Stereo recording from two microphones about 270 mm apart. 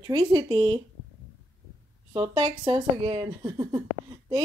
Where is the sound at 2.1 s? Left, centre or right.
Centre.